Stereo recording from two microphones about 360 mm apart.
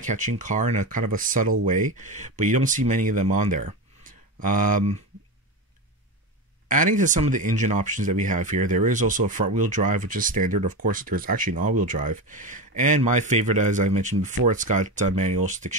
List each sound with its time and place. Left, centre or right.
0.0 s speech: right
6.7 s speech: right